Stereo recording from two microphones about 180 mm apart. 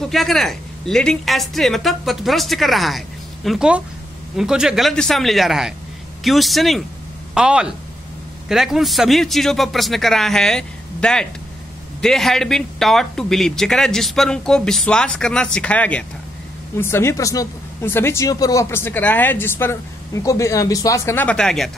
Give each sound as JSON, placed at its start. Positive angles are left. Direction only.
{"t": 0.0, "sound": "speech", "side_deg": 0}